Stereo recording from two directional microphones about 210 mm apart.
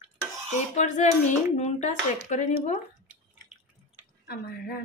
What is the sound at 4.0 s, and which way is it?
Drip, 45° left (ahead or behind).